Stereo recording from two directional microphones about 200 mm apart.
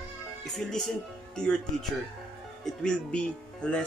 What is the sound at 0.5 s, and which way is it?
Speech, centre (ahead or behind).